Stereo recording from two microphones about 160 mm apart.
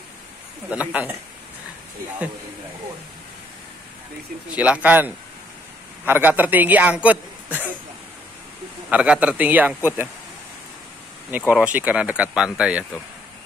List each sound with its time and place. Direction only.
0.7 s a man's voice: 10° right (ahead or behind)
4.5 s a man's voice: 10° right (ahead or behind)
8.9 s a man's voice: 5° right (ahead or behind)
11.2 s a man's voice: 10° right (ahead or behind)